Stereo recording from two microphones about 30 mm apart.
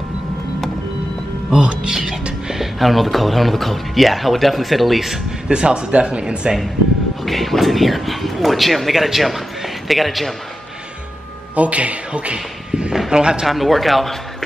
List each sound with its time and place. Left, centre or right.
1.6 s speech: right
2.4 s music: centre
2.8 s speech: centre
5.5 s speech: right
7.2 s speech: centre
11.5 s speech: right
13.1 s speech: right
13.5 s speech: centre